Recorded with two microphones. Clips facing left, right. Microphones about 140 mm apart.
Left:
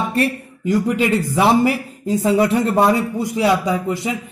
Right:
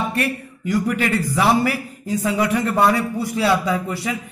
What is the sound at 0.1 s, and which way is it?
A man's voice, 25° left (ahead or behind).